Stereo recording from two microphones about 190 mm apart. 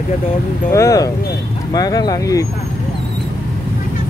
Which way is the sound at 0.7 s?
20° left (ahead or behind).